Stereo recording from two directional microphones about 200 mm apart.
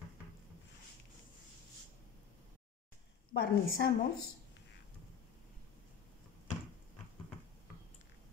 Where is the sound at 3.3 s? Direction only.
55° left (ahead or behind).